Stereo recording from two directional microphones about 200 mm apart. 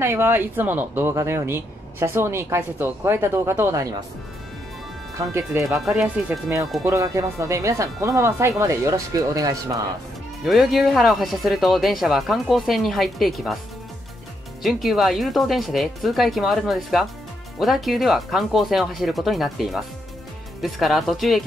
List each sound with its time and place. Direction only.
0.0 s a woman's voice: 10° right (ahead or behind)
5.1 s a woman's voice: 15° right (ahead or behind)
5.9 s speech: centre (ahead or behind)
6.8 s a woman's voice: 15° right (ahead or behind)
10.4 s speech: centre (ahead or behind)
14.6 s speech: centre (ahead or behind)